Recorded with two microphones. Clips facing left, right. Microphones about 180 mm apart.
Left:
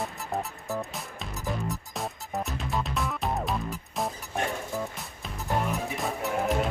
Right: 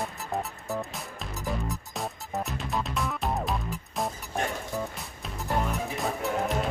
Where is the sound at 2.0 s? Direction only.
Centre (ahead or behind).